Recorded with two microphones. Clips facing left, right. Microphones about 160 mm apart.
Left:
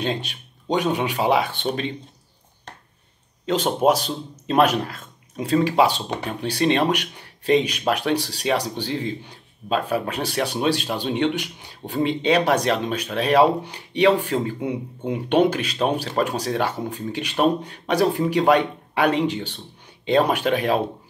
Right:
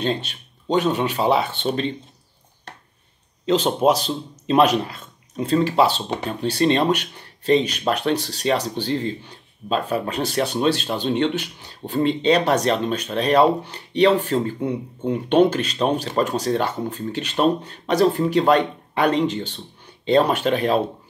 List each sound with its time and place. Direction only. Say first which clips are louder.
0.0 s speech: right 2 dB; 10° left (ahead or behind)
3.4 s speech: right 1 dB; 10° left (ahead or behind)
5.4 s speech: even; 10° left (ahead or behind)